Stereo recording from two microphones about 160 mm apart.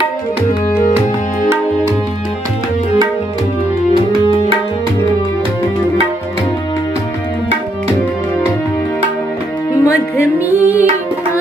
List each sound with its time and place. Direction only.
9.8 s music: 15° left (ahead or behind)
10.5 s music: 10° right (ahead or behind)